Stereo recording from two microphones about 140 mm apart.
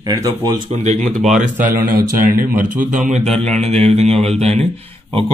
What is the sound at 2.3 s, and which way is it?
Speech, 70° right (ahead or behind).